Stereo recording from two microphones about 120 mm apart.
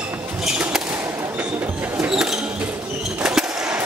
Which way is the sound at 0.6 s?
10° right (ahead or behind).